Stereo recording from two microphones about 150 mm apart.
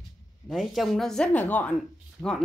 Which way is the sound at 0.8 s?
Centre (ahead or behind).